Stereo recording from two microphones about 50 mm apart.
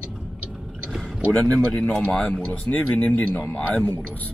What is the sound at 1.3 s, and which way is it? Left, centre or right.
Speech, left.